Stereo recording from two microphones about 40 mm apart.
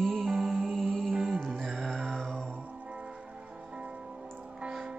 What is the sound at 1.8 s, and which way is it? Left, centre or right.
Mantra, centre.